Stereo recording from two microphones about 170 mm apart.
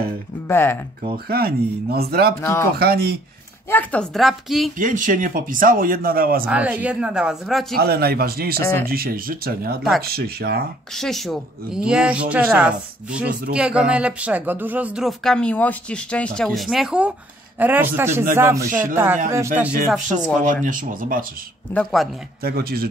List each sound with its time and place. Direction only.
0.5 s speech: 15° left (ahead or behind)
1.1 s a man's voice: 65° right (ahead or behind)
3.6 s speech: 10° left (ahead or behind)
4.7 s a man's voice: 50° right (ahead or behind)
6.4 s speech: 10° right (ahead or behind)
7.7 s a man's voice: 65° right (ahead or behind)
11.0 s speech: centre (ahead or behind)
19.9 s speech: 5° left (ahead or behind)
20.6 s speech: 50° right (ahead or behind)
21.7 s speech: centre (ahead or behind)
22.4 s a man's voice: 65° right (ahead or behind)